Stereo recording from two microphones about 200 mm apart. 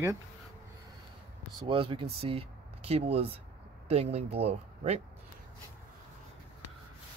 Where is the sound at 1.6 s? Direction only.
25° right (ahead or behind).